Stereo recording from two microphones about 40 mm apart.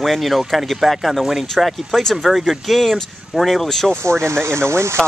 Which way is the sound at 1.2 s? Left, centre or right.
Centre.